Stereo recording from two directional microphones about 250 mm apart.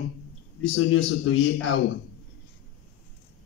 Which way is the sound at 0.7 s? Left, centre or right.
Left.